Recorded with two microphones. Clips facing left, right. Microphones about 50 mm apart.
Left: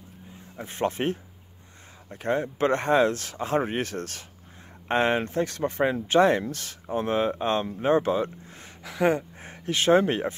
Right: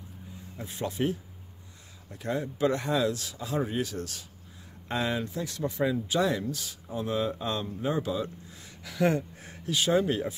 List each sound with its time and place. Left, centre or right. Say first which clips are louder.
0.7 s speech: left 4 dB; left
8.8 s speech: left 3 dB; left